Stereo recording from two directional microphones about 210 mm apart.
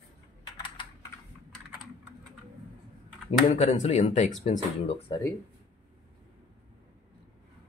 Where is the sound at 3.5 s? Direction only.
30° left (ahead or behind).